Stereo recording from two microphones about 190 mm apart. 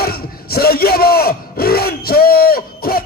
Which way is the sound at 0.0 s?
55° left (ahead or behind).